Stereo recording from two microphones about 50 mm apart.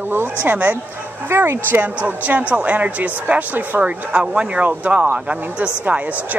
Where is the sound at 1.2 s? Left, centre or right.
Right.